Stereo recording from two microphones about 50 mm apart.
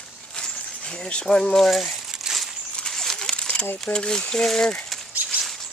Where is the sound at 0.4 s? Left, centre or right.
Centre.